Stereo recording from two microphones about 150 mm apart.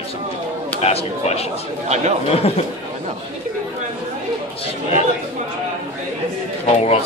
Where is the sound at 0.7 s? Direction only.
45° left (ahead or behind).